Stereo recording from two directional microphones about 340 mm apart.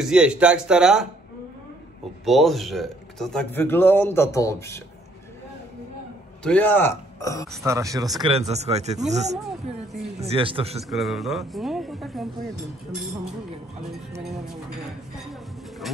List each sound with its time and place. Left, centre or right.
0.0 s speech: centre
2.2 s speech: centre
6.4 s speech: centre
7.5 s speech: centre
10.8 s speech: centre
13.9 s speech: centre